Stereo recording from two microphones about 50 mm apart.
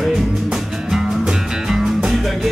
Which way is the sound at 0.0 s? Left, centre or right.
Centre.